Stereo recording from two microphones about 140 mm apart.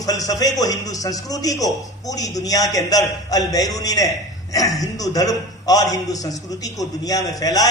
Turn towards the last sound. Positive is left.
turn(degrees=25)  # may be behind; listen again after turning